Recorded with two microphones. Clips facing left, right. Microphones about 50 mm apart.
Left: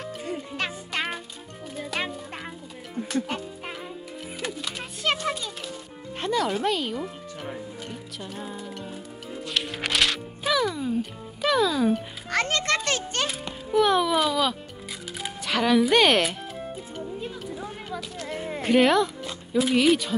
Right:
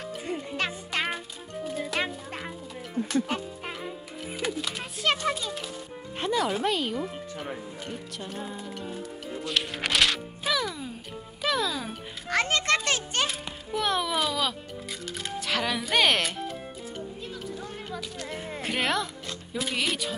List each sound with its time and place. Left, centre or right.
0.6 s music: centre
6.2 s speech: centre
8.6 s music: centre
13.3 s a child's voice: centre
17.2 s music: centre
17.9 s a sound: centre